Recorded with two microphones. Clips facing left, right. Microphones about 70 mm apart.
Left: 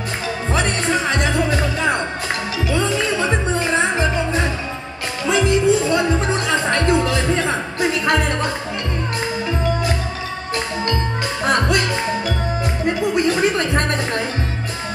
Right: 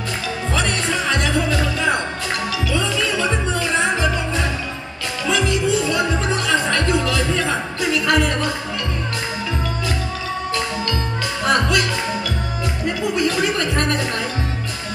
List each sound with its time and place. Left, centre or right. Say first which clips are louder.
0.5 s music: left 2 dB; left
11.4 s music: even; left